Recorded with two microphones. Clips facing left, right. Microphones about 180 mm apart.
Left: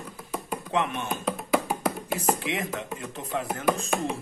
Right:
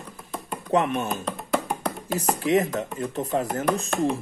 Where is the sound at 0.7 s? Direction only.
40° right (ahead or behind).